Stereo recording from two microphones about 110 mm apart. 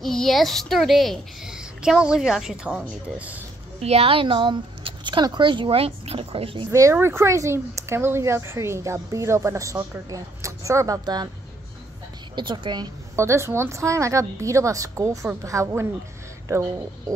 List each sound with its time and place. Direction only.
0.0 s a woman's voice: 5° left (ahead or behind); by 3.3 s 15° right (ahead or behind)
3.8 s speech: 65° right (ahead or behind)
6.7 s speech: 25° right (ahead or behind)
12.4 s speech: 45° right (ahead or behind)
13.1 s speech: 25° right (ahead or behind)